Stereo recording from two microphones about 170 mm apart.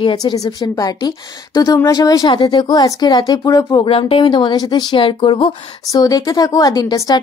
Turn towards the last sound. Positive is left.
turn(degrees=20)  # may be behind; listen again after turning